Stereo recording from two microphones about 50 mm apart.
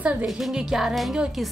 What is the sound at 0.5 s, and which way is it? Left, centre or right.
Music, centre.